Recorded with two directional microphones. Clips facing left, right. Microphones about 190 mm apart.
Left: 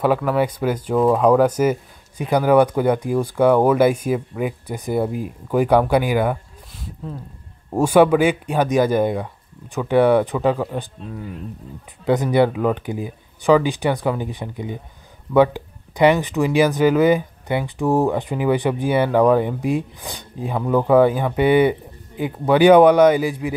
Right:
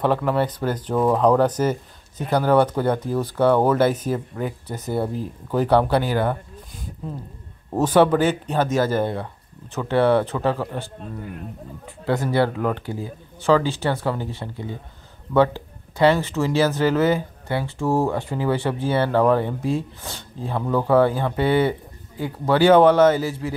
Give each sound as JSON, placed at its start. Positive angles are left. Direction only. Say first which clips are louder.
{"t": 0.0, "sound": "speech", "louder": "left 2 dB", "side_deg": 5}
{"t": 7.7, "sound": "speech", "louder": "left 3 dB", "side_deg": 10}
{"t": 12.1, "sound": "speech", "louder": "left 4 dB", "side_deg": 20}